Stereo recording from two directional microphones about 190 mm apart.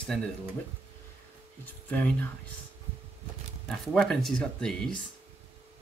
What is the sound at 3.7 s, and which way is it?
Speech, centre (ahead or behind).